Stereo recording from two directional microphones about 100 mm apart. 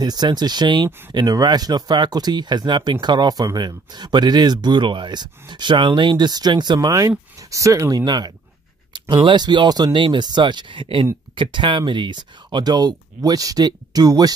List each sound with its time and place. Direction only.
0.0 s speech: 45° right (ahead or behind)
6.9 s speech: 30° right (ahead or behind)